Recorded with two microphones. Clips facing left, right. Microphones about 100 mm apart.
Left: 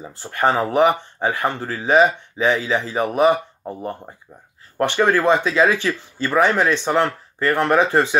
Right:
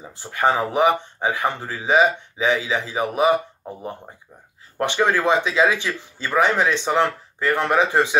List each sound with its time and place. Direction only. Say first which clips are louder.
0.4 s speech: left 2 dB; 15° right (ahead or behind)
4.8 s speech: left 3 dB; 15° right (ahead or behind)